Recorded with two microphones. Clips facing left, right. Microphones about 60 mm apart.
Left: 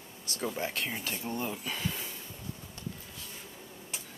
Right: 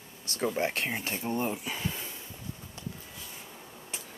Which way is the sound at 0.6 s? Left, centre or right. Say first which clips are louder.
Right 4 dB; right.